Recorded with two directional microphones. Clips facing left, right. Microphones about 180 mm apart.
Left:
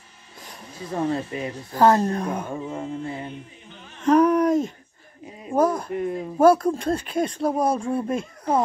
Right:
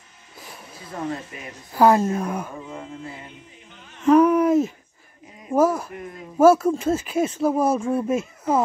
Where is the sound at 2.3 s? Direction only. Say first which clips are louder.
Left 2 dB; 25° left (ahead or behind).